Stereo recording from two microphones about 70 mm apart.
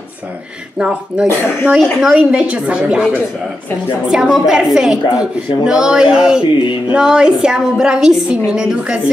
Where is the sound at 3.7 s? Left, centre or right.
Left.